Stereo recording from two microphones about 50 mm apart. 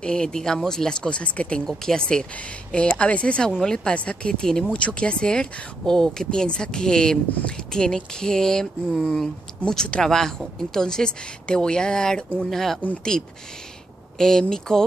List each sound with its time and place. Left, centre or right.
0.0 s speech: centre
1.7 s speech: centre